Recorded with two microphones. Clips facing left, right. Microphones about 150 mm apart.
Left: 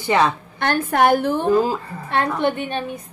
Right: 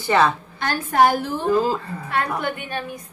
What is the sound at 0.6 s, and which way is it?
Speech, 55° left (ahead or behind).